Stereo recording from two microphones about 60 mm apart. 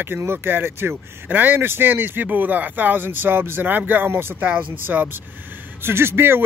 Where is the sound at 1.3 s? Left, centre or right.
Right.